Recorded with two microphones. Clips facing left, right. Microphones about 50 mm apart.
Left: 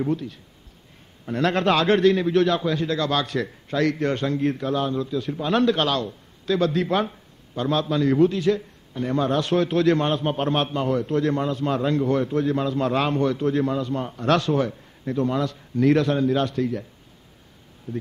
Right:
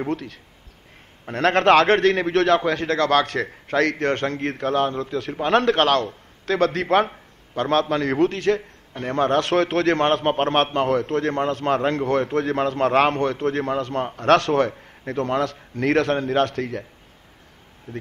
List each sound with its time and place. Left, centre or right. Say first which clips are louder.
0.1 s a man's voice: left 1 dB; right
11.1 s a man's voice: even; right
17.9 s a man's voice: left 3 dB; right